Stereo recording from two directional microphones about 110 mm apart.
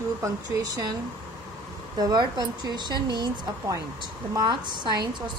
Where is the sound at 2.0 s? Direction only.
35° right (ahead or behind).